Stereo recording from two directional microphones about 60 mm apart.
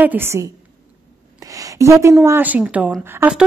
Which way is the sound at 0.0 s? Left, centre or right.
Right.